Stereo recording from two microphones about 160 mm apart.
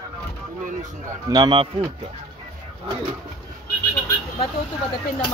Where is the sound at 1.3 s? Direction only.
30° right (ahead or behind).